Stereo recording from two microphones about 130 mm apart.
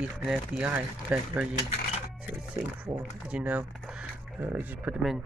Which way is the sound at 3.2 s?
10° right (ahead or behind).